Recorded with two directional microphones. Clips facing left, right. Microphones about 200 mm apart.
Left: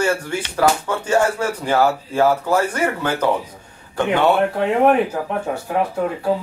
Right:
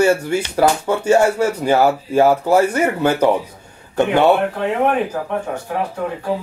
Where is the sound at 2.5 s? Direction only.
10° right (ahead or behind).